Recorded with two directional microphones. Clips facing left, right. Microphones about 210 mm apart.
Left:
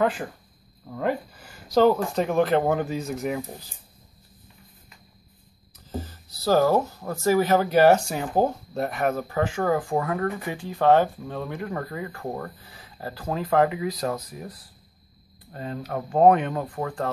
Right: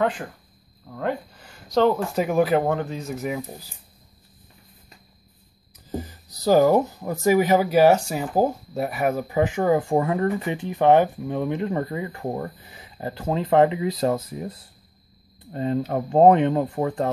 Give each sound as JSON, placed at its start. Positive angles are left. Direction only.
{"t": 0.8, "sound": "speech", "side_deg": 5}
{"t": 2.1, "sound": "speech", "side_deg": -5}
{"t": 5.9, "sound": "speech", "side_deg": -15}